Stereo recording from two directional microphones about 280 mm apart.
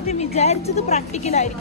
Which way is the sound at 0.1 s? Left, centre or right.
Left.